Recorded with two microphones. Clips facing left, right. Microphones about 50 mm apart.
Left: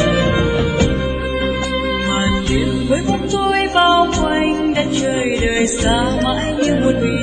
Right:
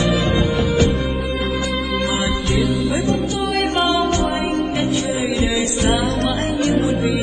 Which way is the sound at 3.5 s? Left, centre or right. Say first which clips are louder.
Left 4 dB; left.